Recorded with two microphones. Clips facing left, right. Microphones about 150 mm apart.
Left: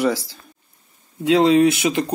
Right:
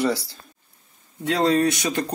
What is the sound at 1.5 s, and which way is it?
Speech, 15° left (ahead or behind).